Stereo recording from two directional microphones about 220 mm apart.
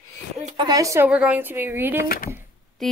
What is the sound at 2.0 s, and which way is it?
Speech, 40° left (ahead or behind).